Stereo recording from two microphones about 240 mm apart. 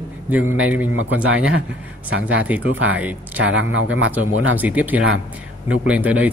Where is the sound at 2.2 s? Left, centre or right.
Centre.